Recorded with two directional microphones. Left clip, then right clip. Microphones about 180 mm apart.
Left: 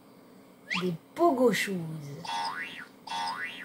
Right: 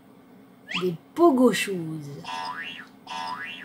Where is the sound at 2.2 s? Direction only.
30° left (ahead or behind).